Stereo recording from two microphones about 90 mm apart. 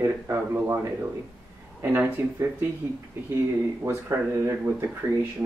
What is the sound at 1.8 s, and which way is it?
Speech, 25° right (ahead or behind).